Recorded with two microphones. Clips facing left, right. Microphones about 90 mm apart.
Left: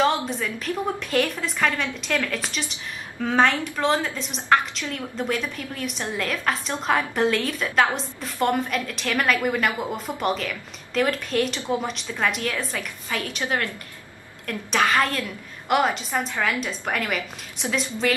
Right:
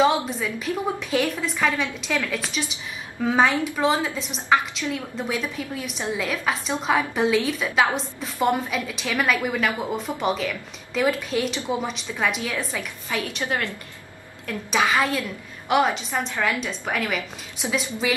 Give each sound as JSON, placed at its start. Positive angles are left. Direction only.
{"t": 0.0, "sound": "a woman's voice", "side_deg": -5}
{"t": 12.7, "sound": "a woman's voice", "side_deg": -15}
{"t": 14.7, "sound": "a woman's voice", "side_deg": -5}